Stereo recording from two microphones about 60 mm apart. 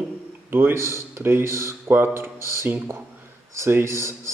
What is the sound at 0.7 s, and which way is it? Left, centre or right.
Speech, right.